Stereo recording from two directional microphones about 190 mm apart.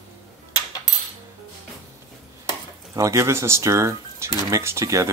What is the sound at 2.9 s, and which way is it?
Speech, 15° right (ahead or behind).